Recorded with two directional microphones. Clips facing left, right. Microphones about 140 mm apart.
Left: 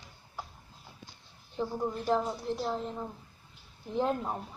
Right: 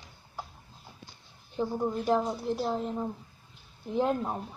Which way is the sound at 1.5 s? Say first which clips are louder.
Right 3 dB; 5° right (ahead or behind).